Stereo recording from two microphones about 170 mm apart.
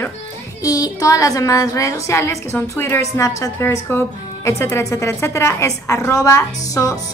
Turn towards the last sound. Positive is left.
turn(degrees=20)  # may be behind; listen again after turning